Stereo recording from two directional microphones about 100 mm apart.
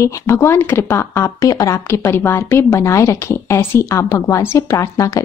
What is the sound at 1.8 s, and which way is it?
Speech, 25° left (ahead or behind).